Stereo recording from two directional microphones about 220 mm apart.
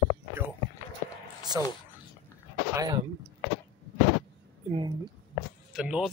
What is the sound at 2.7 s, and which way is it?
Speech, 15° right (ahead or behind).